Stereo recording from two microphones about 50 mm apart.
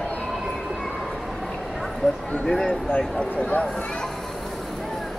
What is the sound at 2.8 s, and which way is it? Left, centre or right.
Speech, left.